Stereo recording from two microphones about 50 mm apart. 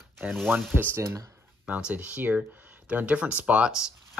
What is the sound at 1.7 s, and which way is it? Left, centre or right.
Speech, right.